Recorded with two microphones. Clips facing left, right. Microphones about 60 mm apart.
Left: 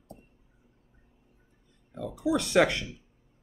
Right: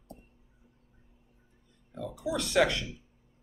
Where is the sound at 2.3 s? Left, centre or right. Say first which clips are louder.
Left 3 dB; left.